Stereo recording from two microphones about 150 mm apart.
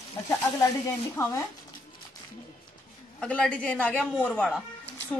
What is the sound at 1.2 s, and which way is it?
Speech, 20° left (ahead or behind).